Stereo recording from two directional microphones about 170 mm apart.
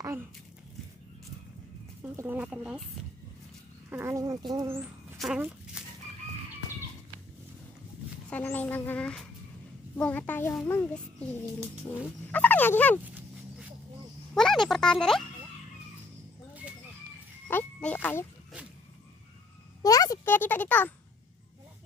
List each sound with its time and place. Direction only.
2.1 s speech: 10° right (ahead or behind)
3.9 s speech: 15° right (ahead or behind)
5.2 s speech: 5° right (ahead or behind)
8.3 s speech: 10° left (ahead or behind)
14.3 s speech: 5° left (ahead or behind)
17.5 s a sound: 10° left (ahead or behind)
19.8 s a child's voice: 20° left (ahead or behind)